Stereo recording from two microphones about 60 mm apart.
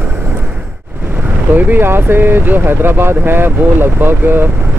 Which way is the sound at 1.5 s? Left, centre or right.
Right.